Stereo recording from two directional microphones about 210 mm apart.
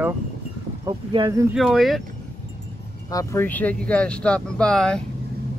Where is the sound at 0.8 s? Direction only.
20° right (ahead or behind).